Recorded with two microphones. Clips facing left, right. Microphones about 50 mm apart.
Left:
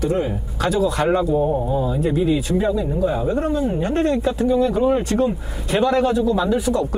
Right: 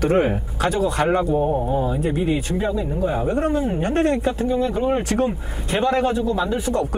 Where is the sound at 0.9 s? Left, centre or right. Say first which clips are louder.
Left 1 dB; right.